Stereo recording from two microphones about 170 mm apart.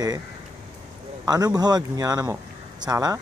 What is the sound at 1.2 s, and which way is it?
A man's voice, 20° right (ahead or behind).